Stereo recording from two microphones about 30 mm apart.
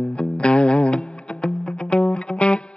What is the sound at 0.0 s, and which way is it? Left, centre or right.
Music, left.